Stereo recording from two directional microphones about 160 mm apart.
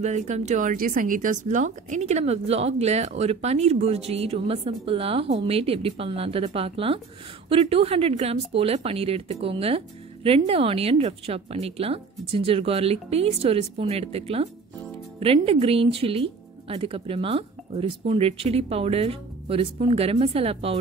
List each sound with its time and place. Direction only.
0.0 s speech: 45° right (ahead or behind)